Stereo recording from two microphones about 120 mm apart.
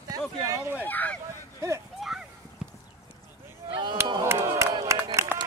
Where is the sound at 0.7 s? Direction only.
15° left (ahead or behind).